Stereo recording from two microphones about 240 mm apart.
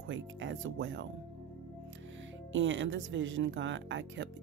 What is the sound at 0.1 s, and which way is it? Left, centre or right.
Speech, right.